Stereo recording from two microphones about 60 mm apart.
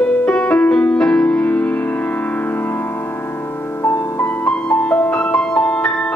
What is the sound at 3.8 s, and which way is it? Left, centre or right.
Music, left.